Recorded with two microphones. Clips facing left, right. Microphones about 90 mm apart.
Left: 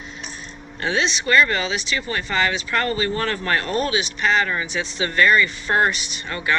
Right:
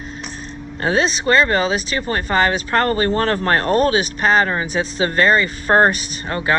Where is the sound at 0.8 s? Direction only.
40° right (ahead or behind).